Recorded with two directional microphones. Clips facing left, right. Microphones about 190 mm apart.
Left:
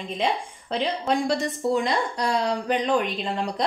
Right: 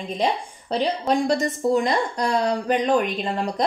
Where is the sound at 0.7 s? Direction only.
40° right (ahead or behind).